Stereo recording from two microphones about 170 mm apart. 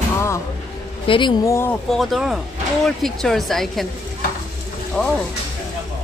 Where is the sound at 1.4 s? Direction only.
15° left (ahead or behind).